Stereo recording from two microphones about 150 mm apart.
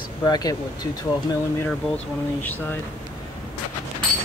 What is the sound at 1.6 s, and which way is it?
Speech, 10° left (ahead or behind).